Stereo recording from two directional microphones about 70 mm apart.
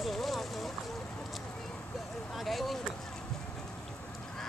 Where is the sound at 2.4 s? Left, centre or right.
Centre.